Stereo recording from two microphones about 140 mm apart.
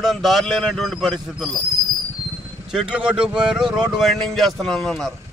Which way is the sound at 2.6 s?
5° right (ahead or behind).